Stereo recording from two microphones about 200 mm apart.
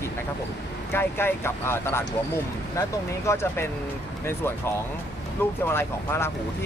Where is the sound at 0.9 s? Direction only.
10° left (ahead or behind).